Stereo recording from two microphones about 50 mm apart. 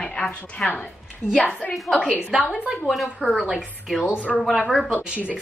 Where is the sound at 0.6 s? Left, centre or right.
Left.